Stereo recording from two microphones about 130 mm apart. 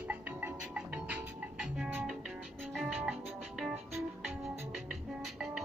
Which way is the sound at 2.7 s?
Centre (ahead or behind).